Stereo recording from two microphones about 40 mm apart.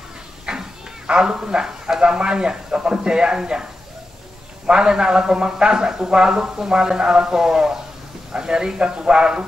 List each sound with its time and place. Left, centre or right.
0.5 s a sound: centre
1.0 s a man's voice: right
4.6 s a man's voice: right